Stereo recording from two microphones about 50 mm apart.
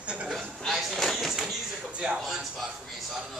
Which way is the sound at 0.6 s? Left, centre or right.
Centre.